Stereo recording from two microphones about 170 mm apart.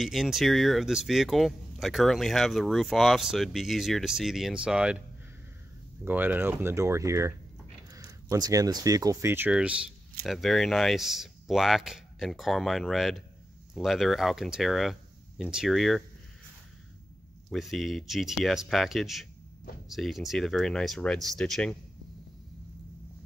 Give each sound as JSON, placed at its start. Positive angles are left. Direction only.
{"t": 0.0, "sound": "speech", "side_deg": 0}
{"t": 6.0, "sound": "speech", "side_deg": -10}
{"t": 17.5, "sound": "speech", "side_deg": 0}